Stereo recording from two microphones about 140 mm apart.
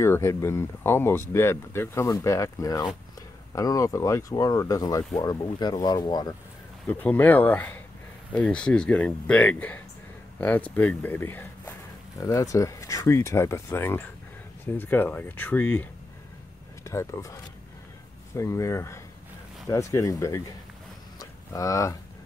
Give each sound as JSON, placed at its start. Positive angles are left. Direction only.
{"t": 0.0, "sound": "speech", "side_deg": 20}
{"t": 6.9, "sound": "speech", "side_deg": 15}
{"t": 21.2, "sound": "livestock", "side_deg": 25}